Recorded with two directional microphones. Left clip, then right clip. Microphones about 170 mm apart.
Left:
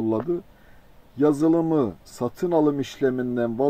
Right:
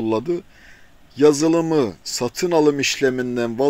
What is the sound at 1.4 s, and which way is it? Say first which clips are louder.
Speech: right 3 dB; 35° right (ahead or behind).